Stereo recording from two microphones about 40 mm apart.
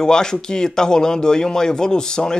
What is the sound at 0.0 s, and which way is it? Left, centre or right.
Speech, centre.